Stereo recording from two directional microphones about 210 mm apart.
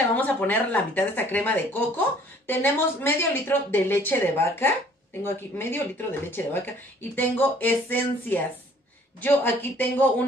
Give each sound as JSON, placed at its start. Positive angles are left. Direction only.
{"t": 0.1, "sound": "speech", "side_deg": 5}